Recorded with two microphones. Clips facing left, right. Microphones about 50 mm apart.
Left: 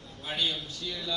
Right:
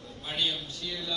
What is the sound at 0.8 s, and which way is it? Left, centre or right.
Speech, left.